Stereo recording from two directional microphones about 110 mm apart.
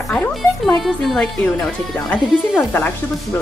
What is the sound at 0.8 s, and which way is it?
Speech, 5° left (ahead or behind).